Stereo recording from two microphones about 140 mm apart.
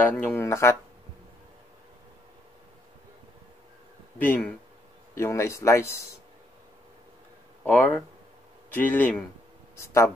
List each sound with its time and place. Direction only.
0.1 s speech: 10° left (ahead or behind)
4.2 s speech: 10° left (ahead or behind)
7.6 s speech: 10° left (ahead or behind)